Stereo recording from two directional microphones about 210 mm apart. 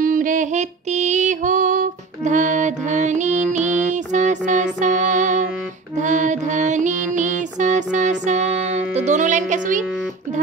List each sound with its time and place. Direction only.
0.0 s music: 40° right (ahead or behind)